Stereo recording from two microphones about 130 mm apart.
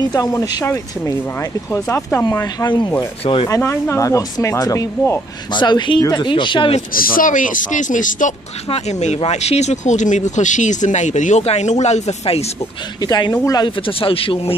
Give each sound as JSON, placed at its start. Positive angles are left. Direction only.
{"t": 0.0, "sound": "speech", "side_deg": 25}
{"t": 2.4, "sound": "speech", "side_deg": 30}
{"t": 5.5, "sound": "speech", "side_deg": 35}
{"t": 6.9, "sound": "speech", "side_deg": 90}
{"t": 8.6, "sound": "speech", "side_deg": 55}
{"t": 13.0, "sound": "speech", "side_deg": 30}